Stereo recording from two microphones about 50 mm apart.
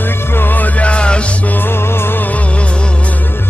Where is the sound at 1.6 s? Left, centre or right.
Left.